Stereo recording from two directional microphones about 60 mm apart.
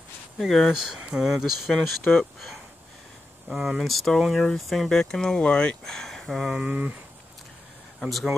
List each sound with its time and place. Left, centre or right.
0.4 s speech: centre
1.7 s speech: centre
5.4 s speech: centre
5.9 s speech: centre
6.7 s speech: right
8.0 s speech: centre